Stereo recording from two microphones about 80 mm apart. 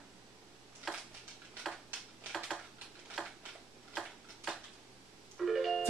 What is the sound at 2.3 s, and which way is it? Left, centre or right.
Dishes, centre.